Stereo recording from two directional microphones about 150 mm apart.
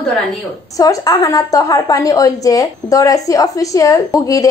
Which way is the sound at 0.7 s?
25° left (ahead or behind).